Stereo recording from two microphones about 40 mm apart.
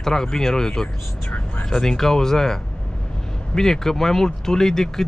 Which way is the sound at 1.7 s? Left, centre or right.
Centre.